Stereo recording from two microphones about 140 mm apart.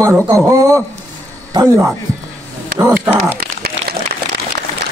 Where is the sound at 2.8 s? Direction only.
10° right (ahead or behind).